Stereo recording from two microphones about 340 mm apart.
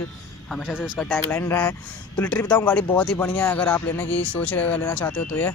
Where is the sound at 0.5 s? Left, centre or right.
Centre.